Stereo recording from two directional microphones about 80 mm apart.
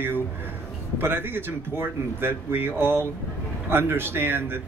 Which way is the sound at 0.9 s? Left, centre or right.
Right.